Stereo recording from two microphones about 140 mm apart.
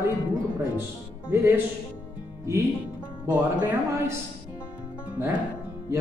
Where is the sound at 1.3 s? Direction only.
15° right (ahead or behind).